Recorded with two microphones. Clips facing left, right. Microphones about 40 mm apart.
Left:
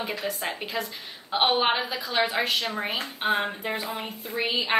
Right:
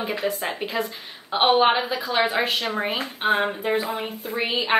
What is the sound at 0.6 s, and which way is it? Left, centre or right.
A woman's voice, centre.